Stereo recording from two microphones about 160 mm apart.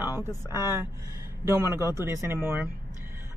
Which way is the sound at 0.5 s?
15° right (ahead or behind).